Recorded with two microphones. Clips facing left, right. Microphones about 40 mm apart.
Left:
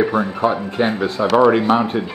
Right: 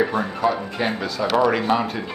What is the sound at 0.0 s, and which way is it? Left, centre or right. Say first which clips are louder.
Speech: left 4 dB; centre.